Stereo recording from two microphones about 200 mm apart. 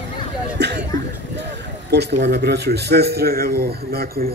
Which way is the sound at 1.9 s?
55° right (ahead or behind).